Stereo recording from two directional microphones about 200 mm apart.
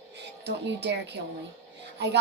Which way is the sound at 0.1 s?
55° right (ahead or behind).